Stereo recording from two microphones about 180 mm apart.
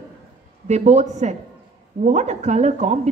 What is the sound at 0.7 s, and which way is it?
A woman's voice, 40° right (ahead or behind).